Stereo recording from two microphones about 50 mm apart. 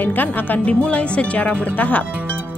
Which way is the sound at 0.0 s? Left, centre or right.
Left.